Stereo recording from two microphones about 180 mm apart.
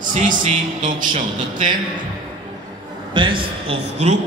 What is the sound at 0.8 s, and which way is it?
Speech, 45° right (ahead or behind).